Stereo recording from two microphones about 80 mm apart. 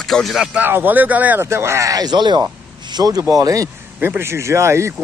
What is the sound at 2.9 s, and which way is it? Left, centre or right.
Speech, right.